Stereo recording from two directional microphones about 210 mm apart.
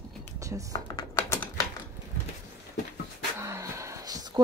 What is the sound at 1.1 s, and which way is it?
Typing, 10° left (ahead or behind).